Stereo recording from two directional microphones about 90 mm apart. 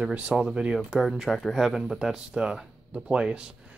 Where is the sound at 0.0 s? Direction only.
15° right (ahead or behind).